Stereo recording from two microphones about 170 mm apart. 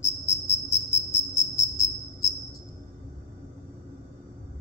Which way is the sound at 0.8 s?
15° left (ahead or behind).